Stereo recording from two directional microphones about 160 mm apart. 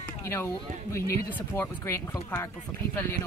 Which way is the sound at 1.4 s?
15° left (ahead or behind).